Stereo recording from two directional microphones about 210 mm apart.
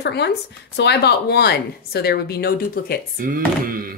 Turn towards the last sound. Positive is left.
turn(degrees=-40)  # may be behind; listen again after turning